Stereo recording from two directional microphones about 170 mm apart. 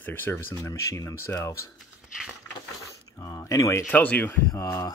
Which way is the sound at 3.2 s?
20° left (ahead or behind).